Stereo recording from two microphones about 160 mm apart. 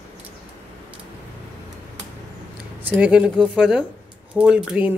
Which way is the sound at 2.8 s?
10° right (ahead or behind).